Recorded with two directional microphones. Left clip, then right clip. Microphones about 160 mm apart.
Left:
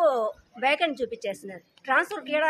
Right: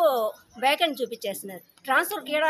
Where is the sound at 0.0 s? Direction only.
5° left (ahead or behind).